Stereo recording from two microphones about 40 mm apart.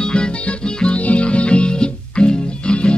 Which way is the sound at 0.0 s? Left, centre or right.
Left.